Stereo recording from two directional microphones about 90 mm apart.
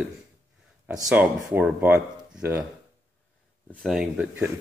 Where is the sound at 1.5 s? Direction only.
20° right (ahead or behind).